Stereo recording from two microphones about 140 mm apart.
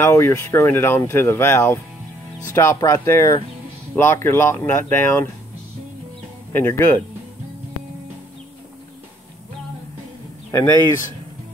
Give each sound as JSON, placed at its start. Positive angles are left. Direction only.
{"t": 0.0, "sound": "speech", "side_deg": 20}
{"t": 6.5, "sound": "speech", "side_deg": 15}
{"t": 10.5, "sound": "speech", "side_deg": 20}